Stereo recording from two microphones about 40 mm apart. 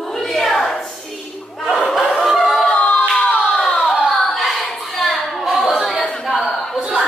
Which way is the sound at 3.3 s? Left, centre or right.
Centre.